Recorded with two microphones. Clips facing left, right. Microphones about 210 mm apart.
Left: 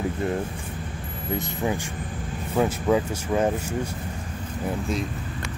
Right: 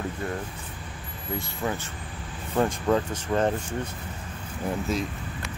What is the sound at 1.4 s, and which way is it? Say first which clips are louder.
Speech: left 3 dB; 15° left (ahead or behind).